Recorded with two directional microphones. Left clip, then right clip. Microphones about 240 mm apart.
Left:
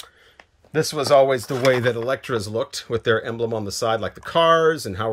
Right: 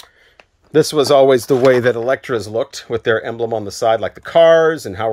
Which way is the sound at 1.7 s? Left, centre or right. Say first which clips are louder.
Right 3 dB; centre.